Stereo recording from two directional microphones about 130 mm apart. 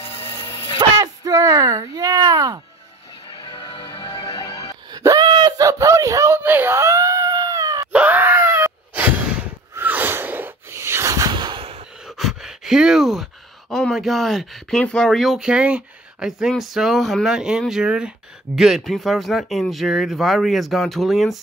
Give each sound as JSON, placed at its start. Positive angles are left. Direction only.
{"t": 0.0, "sound": "dog", "side_deg": 45}
{"t": 0.5, "sound": "a sound", "side_deg": 40}
{"t": 0.7, "sound": "speech", "side_deg": -30}
{"t": 3.3, "sound": "music", "side_deg": 40}
{"t": 4.3, "sound": "music", "side_deg": 30}
{"t": 4.9, "sound": "a sound", "side_deg": -30}
{"t": 5.7, "sound": "screaming", "side_deg": -25}
{"t": 7.9, "sound": "a sound", "side_deg": -10}
{"t": 12.1, "sound": "speech", "side_deg": 0}